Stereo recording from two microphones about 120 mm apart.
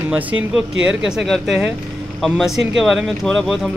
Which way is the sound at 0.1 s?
10° right (ahead or behind).